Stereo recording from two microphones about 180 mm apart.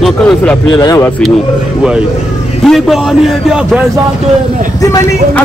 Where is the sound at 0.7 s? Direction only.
20° left (ahead or behind).